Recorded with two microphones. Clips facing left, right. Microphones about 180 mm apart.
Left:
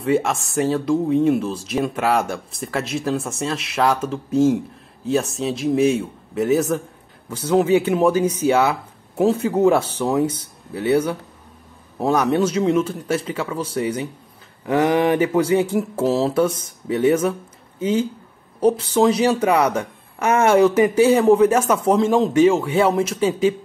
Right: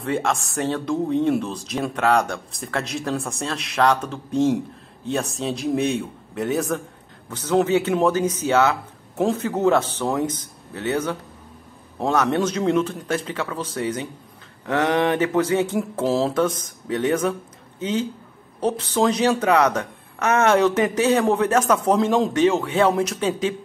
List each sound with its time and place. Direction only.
0.0 s speech: 5° left (ahead or behind)